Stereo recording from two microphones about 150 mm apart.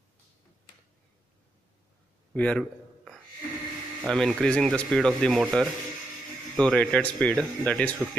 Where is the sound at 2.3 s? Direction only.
10° left (ahead or behind).